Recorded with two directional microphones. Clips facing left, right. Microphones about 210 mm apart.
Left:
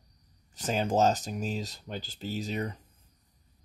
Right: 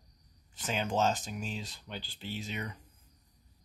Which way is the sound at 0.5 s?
40° left (ahead or behind).